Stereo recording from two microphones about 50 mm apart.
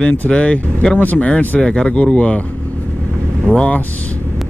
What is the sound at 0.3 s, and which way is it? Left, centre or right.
Speech, left.